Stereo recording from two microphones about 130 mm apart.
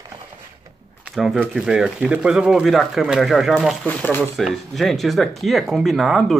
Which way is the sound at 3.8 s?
15° left (ahead or behind).